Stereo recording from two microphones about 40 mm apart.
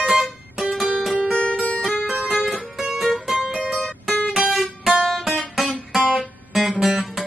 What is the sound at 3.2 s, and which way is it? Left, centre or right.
Music, centre.